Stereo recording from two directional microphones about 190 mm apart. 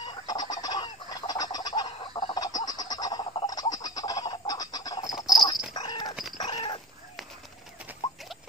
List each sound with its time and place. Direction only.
0.0 s fowl: 20° left (ahead or behind)
5.1 s a sound: centre (ahead or behind)
5.7 s chicken: 20° left (ahead or behind)
6.3 s dog: 25° left (ahead or behind)